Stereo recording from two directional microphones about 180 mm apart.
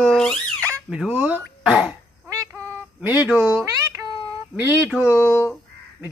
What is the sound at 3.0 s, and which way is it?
Speech, 10° right (ahead or behind).